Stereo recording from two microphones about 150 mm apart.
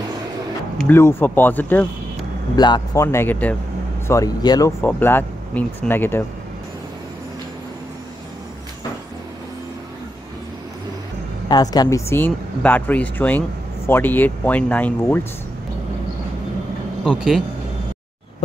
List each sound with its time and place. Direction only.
0.7 s speech: 15° left (ahead or behind)
2.5 s speech: 30° left (ahead or behind); by 3.5 s 10° left (ahead or behind)
4.1 s speech: 25° left (ahead or behind)
4.8 s speech: 10° left (ahead or behind)
11.4 s speech: 25° left (ahead or behind)
17.0 s speech: 5° right (ahead or behind)